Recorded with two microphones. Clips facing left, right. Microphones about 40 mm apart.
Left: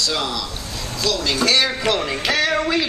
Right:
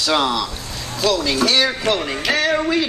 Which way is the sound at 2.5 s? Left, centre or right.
Left.